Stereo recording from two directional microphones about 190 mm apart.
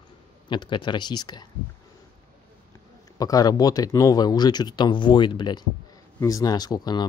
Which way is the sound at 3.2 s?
20° left (ahead or behind).